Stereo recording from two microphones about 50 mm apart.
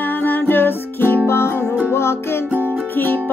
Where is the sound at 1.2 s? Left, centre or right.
Left.